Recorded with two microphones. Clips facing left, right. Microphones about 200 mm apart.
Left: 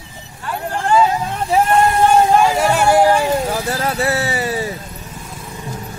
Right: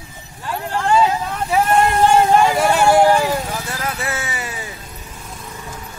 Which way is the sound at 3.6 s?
35° left (ahead or behind).